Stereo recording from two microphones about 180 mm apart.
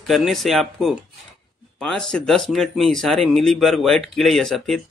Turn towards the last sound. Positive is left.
turn(degrees=0)  # may be behind; listen again after turning